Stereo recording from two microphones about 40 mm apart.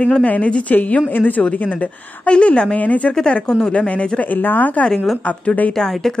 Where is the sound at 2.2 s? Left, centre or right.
Left.